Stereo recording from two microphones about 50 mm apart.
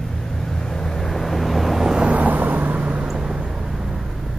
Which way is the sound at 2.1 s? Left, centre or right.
Right.